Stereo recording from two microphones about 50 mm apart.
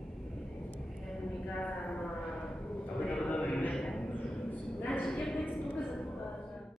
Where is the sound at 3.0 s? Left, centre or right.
Left.